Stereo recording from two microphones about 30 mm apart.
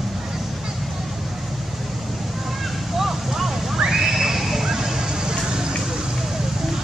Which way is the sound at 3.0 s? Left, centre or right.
Centre.